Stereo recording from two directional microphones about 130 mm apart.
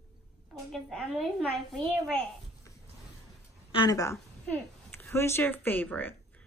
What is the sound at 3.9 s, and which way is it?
A woman's voice, 25° left (ahead or behind).